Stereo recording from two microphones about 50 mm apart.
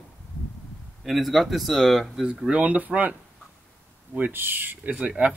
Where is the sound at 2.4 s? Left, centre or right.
Right.